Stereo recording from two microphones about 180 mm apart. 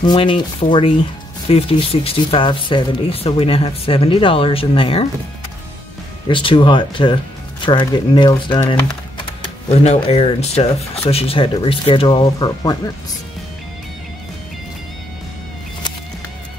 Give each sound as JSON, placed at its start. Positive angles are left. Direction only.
{"t": 0.0, "sound": "speech", "side_deg": 25}
{"t": 6.2, "sound": "speech", "side_deg": 25}